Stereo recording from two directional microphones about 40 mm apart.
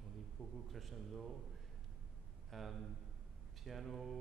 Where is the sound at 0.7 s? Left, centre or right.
Centre.